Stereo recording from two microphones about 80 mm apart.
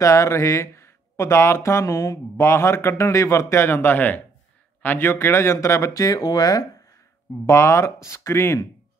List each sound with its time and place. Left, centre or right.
0.0 s speech: left
7.4 s speech: left